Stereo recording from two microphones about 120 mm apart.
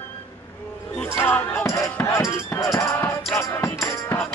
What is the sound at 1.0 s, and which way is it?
Music, 20° left (ahead or behind).